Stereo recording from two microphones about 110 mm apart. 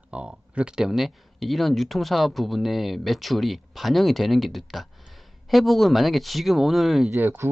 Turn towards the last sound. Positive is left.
turn(degrees=-20)  # may be behind; listen again after turning